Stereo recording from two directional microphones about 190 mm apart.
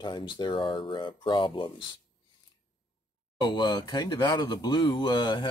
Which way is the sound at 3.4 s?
25° left (ahead or behind).